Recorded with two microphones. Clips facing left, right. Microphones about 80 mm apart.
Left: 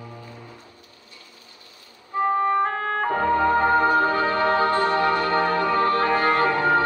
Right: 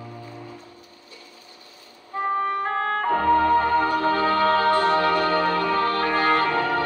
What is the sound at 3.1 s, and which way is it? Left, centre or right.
Music, left.